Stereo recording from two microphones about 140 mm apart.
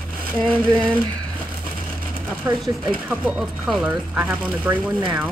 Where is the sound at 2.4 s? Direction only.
35° right (ahead or behind).